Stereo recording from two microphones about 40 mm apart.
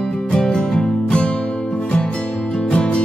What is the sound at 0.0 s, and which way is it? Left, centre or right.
Music, centre.